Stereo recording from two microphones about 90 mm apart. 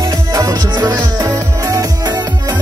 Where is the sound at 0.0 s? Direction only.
45° right (ahead or behind).